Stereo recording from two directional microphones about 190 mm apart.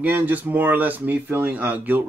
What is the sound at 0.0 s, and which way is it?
Speech, 10° right (ahead or behind).